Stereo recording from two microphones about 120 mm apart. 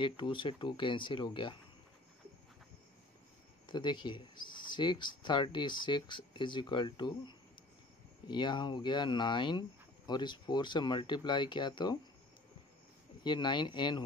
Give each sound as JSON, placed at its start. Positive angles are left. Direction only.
{"t": 0.0, "sound": "speech", "side_deg": 45}
{"t": 3.6, "sound": "speech", "side_deg": 40}
{"t": 13.2, "sound": "speech", "side_deg": 40}